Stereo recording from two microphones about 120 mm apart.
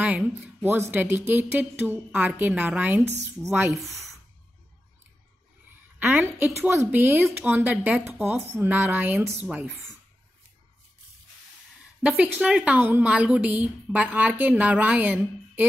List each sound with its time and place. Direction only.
0.0 s a woman's voice: 15° right (ahead or behind)
6.3 s a woman's voice: 20° right (ahead or behind)
12.0 s a woman's voice: 10° right (ahead or behind)